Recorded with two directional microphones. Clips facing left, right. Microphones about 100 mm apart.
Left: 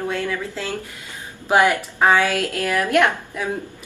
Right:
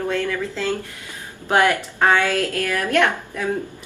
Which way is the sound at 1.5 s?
15° left (ahead or behind).